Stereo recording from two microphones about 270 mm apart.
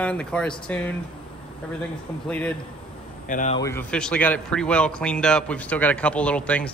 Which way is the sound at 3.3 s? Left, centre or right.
Left.